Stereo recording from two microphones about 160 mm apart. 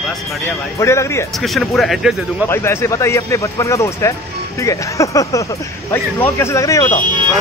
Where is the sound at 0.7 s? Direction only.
15° left (ahead or behind).